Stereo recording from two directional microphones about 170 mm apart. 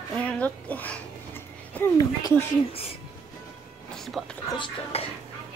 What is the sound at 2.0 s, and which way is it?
Speech, 20° left (ahead or behind).